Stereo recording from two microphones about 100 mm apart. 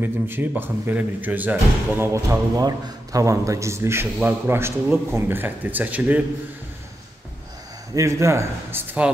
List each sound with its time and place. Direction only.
0.0 s a man's voice: 20° right (ahead or behind)
2.1 s a man's voice: 35° right (ahead or behind); by 6.2 s 15° right (ahead or behind)
7.9 s a man's voice: 30° right (ahead or behind)